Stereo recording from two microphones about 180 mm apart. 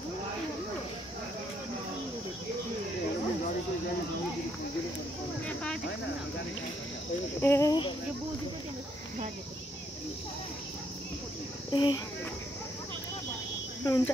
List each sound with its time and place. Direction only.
7.4 s speech: 15° left (ahead or behind)
11.7 s speech: 25° left (ahead or behind)
13.8 s speech: 20° left (ahead or behind)